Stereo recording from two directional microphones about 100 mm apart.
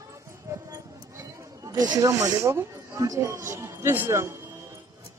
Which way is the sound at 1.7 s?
40° right (ahead or behind).